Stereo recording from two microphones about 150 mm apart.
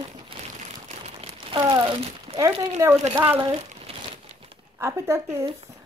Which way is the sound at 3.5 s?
45° right (ahead or behind).